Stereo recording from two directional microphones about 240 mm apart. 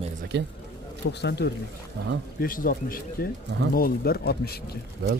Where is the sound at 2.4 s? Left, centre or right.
Left.